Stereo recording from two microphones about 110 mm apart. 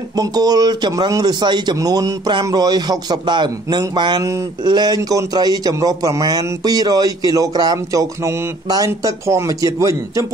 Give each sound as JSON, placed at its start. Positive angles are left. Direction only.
{"t": 0.1, "sound": "a man's voice", "side_deg": -35}